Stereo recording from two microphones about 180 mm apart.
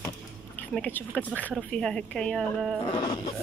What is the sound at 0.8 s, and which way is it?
Speech, 10° left (ahead or behind).